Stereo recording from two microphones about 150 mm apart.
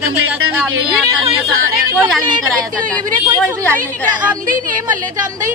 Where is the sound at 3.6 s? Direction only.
10° left (ahead or behind).